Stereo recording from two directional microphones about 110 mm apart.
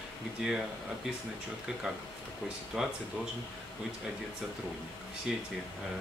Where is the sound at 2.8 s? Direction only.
5° right (ahead or behind).